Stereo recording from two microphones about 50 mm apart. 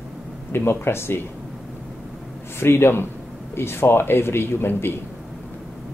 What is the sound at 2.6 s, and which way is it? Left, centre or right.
A man's voice, left.